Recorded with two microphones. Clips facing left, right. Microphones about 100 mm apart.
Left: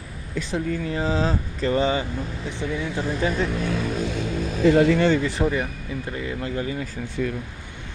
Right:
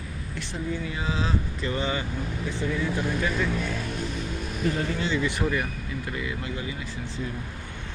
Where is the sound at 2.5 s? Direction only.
20° left (ahead or behind).